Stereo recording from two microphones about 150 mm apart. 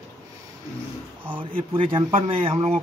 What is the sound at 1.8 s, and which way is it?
Speech, 35° right (ahead or behind).